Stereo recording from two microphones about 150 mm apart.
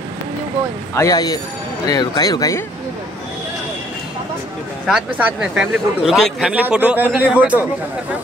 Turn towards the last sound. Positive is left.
turn(degrees=-10)  # may be behind; listen again after turning